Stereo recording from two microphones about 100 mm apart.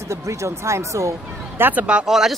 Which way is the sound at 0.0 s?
30° right (ahead or behind).